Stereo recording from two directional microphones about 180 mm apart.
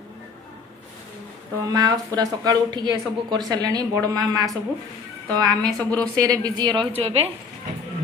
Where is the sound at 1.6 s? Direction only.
20° right (ahead or behind).